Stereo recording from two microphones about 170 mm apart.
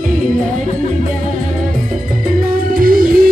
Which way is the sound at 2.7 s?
55° right (ahead or behind).